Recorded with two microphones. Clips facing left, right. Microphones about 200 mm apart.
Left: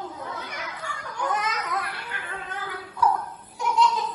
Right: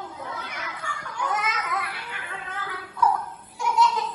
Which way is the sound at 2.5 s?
10° left (ahead or behind).